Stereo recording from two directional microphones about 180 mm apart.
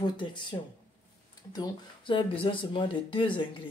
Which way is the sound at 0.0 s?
25° left (ahead or behind).